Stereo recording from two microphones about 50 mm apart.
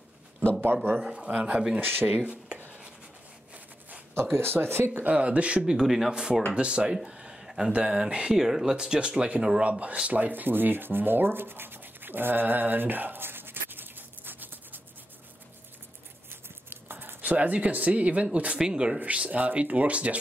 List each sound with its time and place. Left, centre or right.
1.0 s speech: right
1.8 s speech: right
4.1 s speech: right
5.0 s speech: right
9.6 s speech: right
10.0 s rub: right
16.3 s a sound: right
17.2 s speech: right
18.9 s speech: right